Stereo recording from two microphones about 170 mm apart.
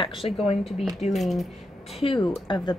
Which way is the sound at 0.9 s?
Centre (ahead or behind).